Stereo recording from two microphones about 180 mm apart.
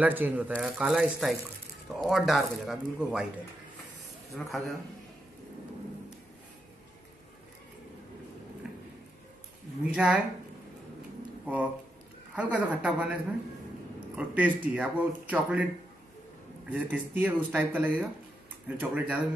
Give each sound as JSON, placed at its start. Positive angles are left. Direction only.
{"t": 0.0, "sound": "speech", "side_deg": -10}
{"t": 4.4, "sound": "speech", "side_deg": 0}
{"t": 8.6, "sound": "a sound", "side_deg": -5}
{"t": 9.9, "sound": "speech", "side_deg": -5}
{"t": 11.4, "sound": "speech", "side_deg": -10}